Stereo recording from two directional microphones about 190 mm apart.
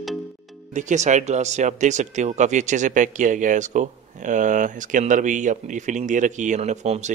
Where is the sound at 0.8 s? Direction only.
40° right (ahead or behind).